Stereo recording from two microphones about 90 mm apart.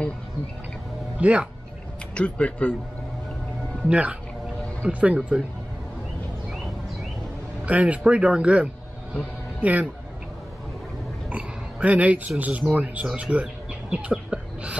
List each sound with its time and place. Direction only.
1.1 s speech: 15° right (ahead or behind)
2.1 s speech: 10° left (ahead or behind)
3.9 s speech: 15° right (ahead or behind)
7.6 s speech: 15° right (ahead or behind)
11.2 s oink: 15° right (ahead or behind)
12.4 s speech: 15° right (ahead or behind)
14.1 s a sound: 15° right (ahead or behind)